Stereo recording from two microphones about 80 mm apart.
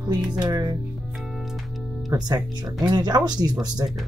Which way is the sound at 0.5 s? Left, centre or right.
Right.